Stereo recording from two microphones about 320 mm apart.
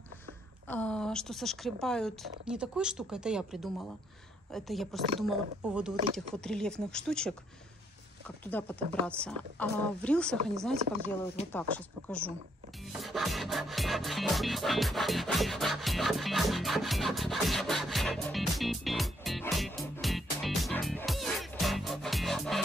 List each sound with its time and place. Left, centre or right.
0.7 s speech: centre
8.5 s speech: centre
11.4 s speech: left
12.1 s speech: centre
13.0 s music: centre